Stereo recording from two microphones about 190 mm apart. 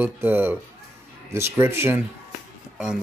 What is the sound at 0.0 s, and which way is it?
Speech, 10° right (ahead or behind).